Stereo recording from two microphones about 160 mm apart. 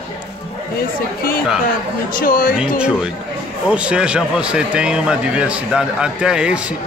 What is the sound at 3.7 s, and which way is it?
Speech, 5° right (ahead or behind).